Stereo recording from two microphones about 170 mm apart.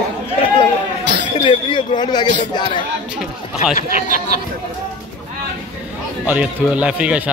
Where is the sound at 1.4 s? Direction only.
30° left (ahead or behind).